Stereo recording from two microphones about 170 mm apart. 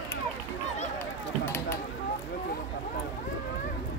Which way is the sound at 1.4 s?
15° left (ahead or behind).